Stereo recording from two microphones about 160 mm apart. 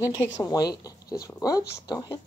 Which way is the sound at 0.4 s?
25° left (ahead or behind).